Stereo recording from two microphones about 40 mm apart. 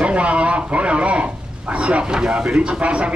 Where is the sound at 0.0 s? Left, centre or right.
Right.